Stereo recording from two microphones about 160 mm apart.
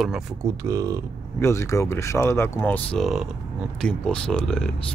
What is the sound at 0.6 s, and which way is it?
Speech, 20° right (ahead or behind).